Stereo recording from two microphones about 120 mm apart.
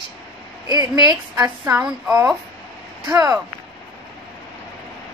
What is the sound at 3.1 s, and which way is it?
Speech, 25° right (ahead or behind).